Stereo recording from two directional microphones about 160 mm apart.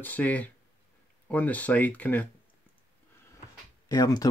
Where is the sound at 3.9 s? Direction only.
25° left (ahead or behind).